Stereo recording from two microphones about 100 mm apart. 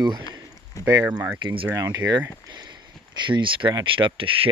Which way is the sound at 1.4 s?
60° right (ahead or behind).